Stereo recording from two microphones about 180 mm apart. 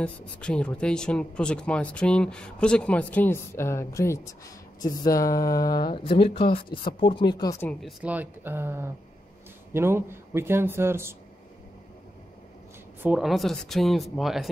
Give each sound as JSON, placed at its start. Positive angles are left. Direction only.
{"t": 0.0, "sound": "speech", "side_deg": 5}
{"t": 8.0, "sound": "speech", "side_deg": -10}
{"t": 13.0, "sound": "speech", "side_deg": -5}